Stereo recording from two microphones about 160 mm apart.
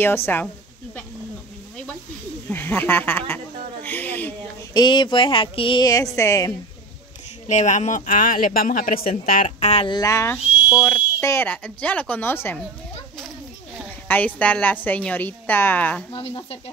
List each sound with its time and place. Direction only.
0.0 s a woman's voice: 15° left (ahead or behind)
2.5 s a woman's voice: 10° left (ahead or behind)
3.8 s a sound: 10° left (ahead or behind)
4.7 s a sound: 30° left (ahead or behind)
7.4 s speech: 50° left (ahead or behind)
9.8 s a sound: 20° left (ahead or behind)
10.8 s a woman's voice: 15° left (ahead or behind)
14.0 s a woman's voice: 10° left (ahead or behind)
16.1 s speech: 35° left (ahead or behind)